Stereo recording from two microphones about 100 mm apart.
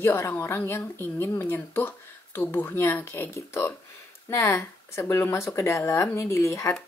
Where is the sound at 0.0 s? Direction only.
20° left (ahead or behind).